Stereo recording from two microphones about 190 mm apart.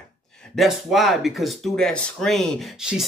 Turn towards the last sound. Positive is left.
turn(degrees=-5)  # may be behind; listen again after turning